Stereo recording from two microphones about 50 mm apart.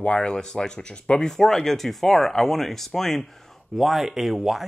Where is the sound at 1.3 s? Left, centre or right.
Centre.